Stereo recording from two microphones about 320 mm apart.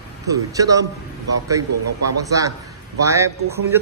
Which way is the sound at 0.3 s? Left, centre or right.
Centre.